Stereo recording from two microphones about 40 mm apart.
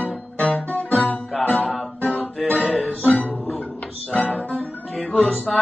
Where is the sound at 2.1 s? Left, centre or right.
Left.